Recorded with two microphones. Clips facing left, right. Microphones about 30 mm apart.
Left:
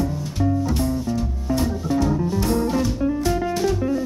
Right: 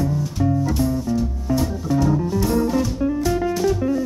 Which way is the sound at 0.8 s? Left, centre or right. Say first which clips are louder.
Right 2 dB; centre.